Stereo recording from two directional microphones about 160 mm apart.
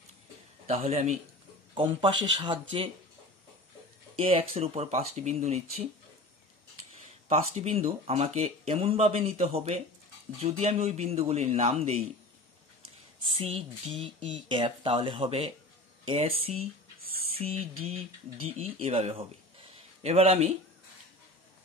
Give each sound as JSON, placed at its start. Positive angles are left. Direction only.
{"t": 0.7, "sound": "speech", "side_deg": -40}
{"t": 4.2, "sound": "speech", "side_deg": -35}
{"t": 7.2, "sound": "speech", "side_deg": -40}
{"t": 13.3, "sound": "speech", "side_deg": -35}